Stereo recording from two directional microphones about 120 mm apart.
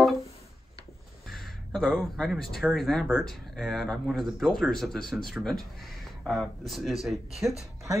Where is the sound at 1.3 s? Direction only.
Centre (ahead or behind).